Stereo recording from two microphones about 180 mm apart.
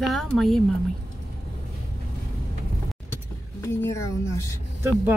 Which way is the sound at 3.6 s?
15° left (ahead or behind).